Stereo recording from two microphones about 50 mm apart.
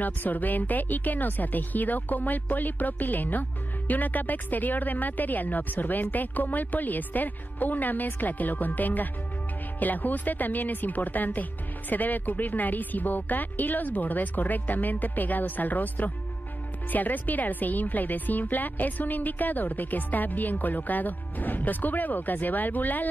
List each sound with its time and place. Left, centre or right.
0.0 s speech: left